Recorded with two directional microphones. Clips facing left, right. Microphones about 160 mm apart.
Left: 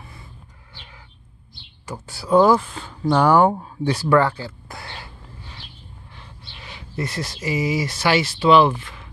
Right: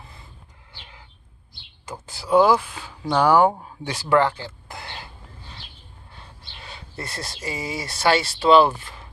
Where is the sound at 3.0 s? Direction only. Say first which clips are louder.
Left 2 dB; centre (ahead or behind).